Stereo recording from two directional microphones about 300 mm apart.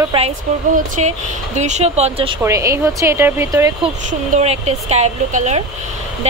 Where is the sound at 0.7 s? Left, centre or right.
Right.